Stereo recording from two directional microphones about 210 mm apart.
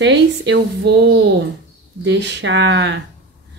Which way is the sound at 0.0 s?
55° right (ahead or behind).